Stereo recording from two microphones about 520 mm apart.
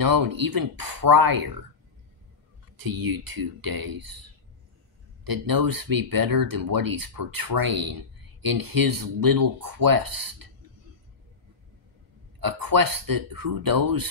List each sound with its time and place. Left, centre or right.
0.0 s speech: right
2.8 s speech: right
5.2 s speech: right
12.4 s speech: right